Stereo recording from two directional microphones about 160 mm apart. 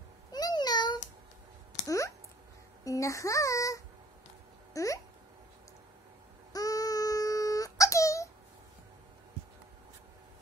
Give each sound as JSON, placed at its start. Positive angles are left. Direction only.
{"t": 0.3, "sound": "a sound", "side_deg": 25}
{"t": 2.8, "sound": "a child's voice", "side_deg": 20}
{"t": 6.5, "sound": "wail", "side_deg": 20}